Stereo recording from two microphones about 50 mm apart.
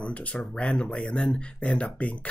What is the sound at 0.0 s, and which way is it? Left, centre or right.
Speech, left.